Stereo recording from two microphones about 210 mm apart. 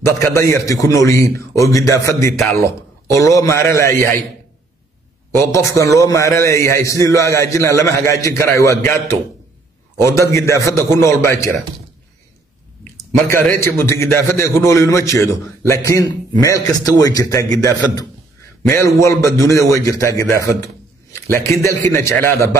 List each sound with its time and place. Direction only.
0.0 s a man's voice: 15° left (ahead or behind)
5.3 s a man's voice: 15° left (ahead or behind)
13.3 s a man's voice: 10° left (ahead or behind)